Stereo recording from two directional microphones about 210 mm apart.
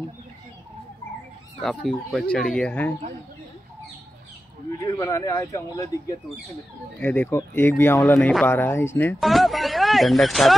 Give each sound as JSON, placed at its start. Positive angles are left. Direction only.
{"t": 1.6, "sound": "speech", "side_deg": 0}
{"t": 4.8, "sound": "speech", "side_deg": 15}
{"t": 9.2, "sound": "speech", "side_deg": 0}